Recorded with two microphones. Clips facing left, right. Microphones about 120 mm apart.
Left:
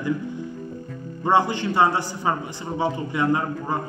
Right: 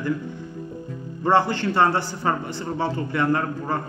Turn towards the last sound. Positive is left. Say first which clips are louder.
# even
turn(degrees=15)  # may be behind; listen again after turning